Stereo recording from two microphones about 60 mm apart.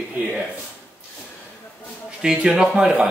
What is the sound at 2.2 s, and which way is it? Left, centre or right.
Speech, centre.